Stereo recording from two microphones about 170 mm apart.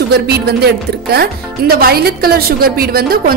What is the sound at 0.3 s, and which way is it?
A woman's voice, 70° right (ahead or behind).